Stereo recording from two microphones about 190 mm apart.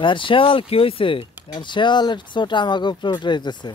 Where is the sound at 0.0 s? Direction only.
25° left (ahead or behind).